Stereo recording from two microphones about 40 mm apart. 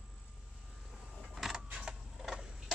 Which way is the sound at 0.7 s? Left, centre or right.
Centre.